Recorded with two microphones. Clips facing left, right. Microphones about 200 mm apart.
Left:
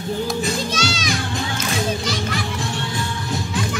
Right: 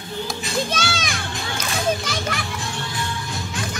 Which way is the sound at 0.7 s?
55° right (ahead or behind).